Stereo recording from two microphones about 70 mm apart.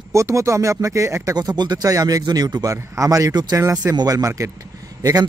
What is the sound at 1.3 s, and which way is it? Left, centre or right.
Speech, right.